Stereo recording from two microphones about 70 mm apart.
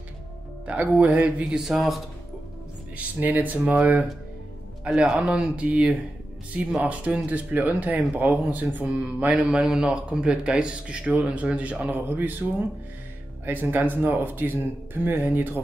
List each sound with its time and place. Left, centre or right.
0.7 s speech: right
1.4 s speech: centre
3.0 s speech: right
4.8 s a man's voice: centre; by 15.6 s right